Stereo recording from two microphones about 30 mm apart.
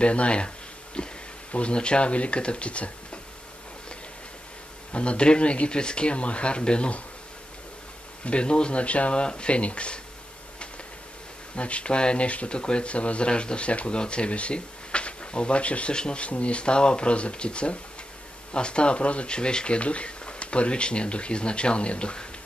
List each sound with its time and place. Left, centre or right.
0.0 s speech: left
1.0 s a sound: left
1.5 s speech: left
4.9 s speech: left
8.3 s speech: left
8.8 s speech: left
9.1 s speech: left
9.6 s speech: left
11.5 s speech: left
15.9 s speech: left
16.2 s speech: left